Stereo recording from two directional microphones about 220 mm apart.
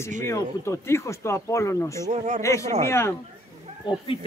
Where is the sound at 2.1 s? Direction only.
30° right (ahead or behind).